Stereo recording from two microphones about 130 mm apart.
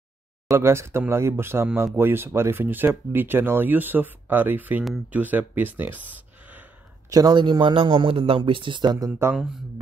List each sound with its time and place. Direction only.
0.5 s speech: 20° right (ahead or behind)
7.1 s a man's voice: 30° right (ahead or behind)